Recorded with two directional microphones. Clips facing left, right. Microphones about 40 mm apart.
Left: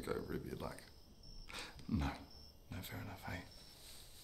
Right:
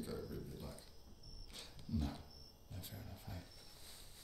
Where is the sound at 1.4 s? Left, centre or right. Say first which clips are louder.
Left 6 dB; left.